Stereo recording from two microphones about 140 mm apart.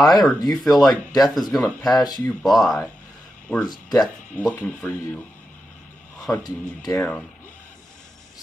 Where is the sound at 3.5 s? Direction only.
10° left (ahead or behind).